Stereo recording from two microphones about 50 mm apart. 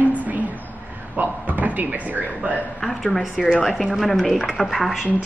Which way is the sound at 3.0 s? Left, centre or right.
Centre.